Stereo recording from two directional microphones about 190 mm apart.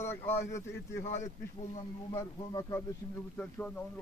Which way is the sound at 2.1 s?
15° left (ahead or behind).